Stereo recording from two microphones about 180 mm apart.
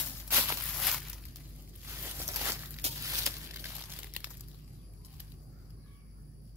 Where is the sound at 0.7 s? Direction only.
Centre (ahead or behind).